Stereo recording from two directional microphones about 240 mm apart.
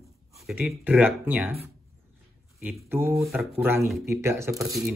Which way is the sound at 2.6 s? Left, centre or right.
Centre.